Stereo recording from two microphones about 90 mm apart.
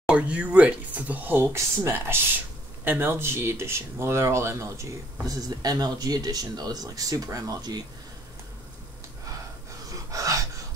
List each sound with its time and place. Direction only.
0.1 s speech: 15° right (ahead or behind); by 4.8 s 35° right (ahead or behind)
5.3 s speech: 45° right (ahead or behind)
10.1 s a sound: 40° right (ahead or behind)